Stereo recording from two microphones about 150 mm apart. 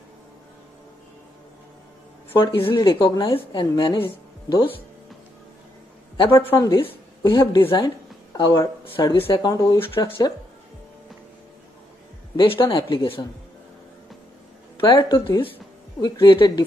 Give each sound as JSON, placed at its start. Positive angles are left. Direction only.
{"t": 2.3, "sound": "a woman's voice", "side_deg": 35}
{"t": 6.1, "sound": "a woman's voice", "side_deg": 35}
{"t": 12.4, "sound": "a woman's voice", "side_deg": 35}
{"t": 14.8, "sound": "speech", "side_deg": 30}